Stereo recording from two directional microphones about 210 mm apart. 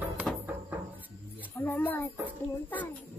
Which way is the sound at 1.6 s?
10° left (ahead or behind).